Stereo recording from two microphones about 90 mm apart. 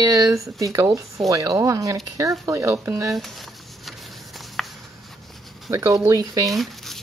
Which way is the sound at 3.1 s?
Centre (ahead or behind).